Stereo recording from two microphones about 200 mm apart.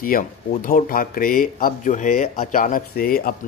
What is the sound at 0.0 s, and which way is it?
Speech, 45° left (ahead or behind).